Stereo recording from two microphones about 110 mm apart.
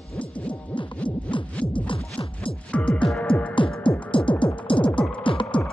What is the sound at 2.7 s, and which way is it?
Music, 10° left (ahead or behind).